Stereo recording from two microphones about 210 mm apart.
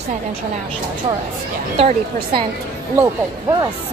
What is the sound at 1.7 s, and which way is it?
Speech, 25° right (ahead or behind).